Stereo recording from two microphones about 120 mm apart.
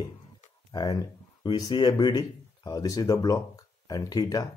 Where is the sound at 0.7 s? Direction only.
35° left (ahead or behind).